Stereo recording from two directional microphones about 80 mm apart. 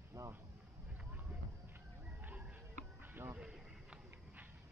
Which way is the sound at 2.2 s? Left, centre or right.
Centre.